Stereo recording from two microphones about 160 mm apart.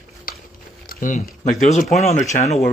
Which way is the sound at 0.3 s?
60° left (ahead or behind).